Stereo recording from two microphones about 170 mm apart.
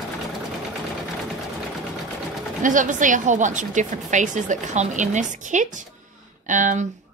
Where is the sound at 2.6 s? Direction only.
50° right (ahead or behind).